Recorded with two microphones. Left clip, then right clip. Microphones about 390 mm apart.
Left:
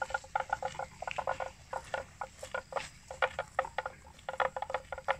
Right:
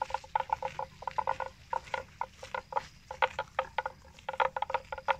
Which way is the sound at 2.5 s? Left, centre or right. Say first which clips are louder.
Right 3 dB; centre.